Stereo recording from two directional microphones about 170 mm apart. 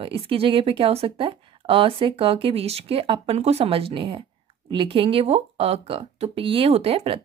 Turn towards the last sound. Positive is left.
turn(degrees=-35)  # may be behind; listen again after turning